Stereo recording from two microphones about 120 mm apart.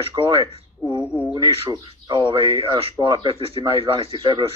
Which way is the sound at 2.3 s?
50° right (ahead or behind).